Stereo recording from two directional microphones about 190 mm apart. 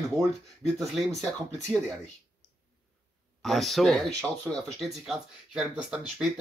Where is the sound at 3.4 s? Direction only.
Centre (ahead or behind).